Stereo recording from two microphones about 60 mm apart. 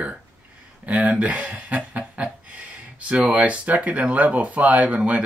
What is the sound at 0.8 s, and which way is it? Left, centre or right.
Speech, right.